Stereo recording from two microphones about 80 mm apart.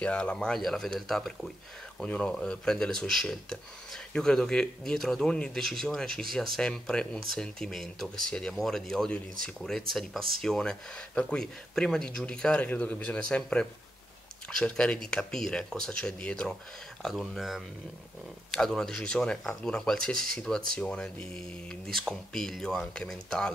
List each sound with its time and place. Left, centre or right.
0.0 s speech: centre
2.0 s speech: centre
17.3 s speech: centre